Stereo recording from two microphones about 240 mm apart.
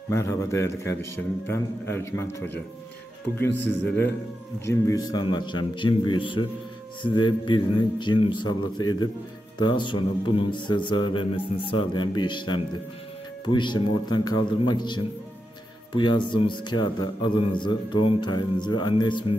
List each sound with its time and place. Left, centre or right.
0.1 s a man's voice: centre